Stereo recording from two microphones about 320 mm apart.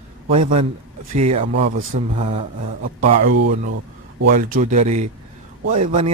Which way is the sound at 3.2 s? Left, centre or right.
Right.